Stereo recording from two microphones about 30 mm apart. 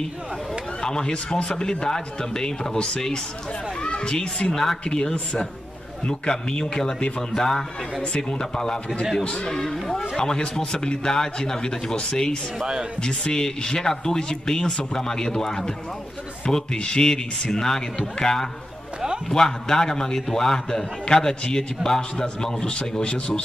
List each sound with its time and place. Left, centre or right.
0.8 s a man's voice: left
4.5 s speech: centre
4.8 s a man's voice: left
7.2 s a man's voice: centre
9.2 s a man's voice: left
9.7 s a man's voice: centre; by 23.4 s left